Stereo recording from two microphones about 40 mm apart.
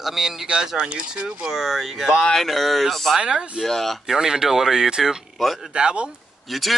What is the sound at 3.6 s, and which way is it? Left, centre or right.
Speech, centre.